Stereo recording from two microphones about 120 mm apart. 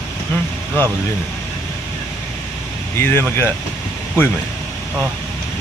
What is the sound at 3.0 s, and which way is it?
Speech, 20° left (ahead or behind).